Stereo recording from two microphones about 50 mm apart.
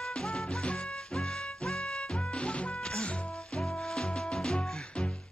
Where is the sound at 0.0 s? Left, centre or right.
Centre.